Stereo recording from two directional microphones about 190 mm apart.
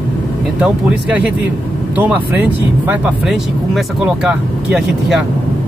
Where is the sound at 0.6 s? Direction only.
5° right (ahead or behind).